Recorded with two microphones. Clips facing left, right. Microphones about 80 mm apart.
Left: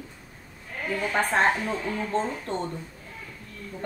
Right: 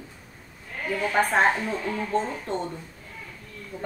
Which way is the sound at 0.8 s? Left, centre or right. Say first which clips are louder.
Right 2 dB; centre.